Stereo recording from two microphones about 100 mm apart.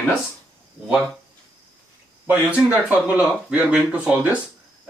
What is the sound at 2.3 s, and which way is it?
Speech, 15° right (ahead or behind).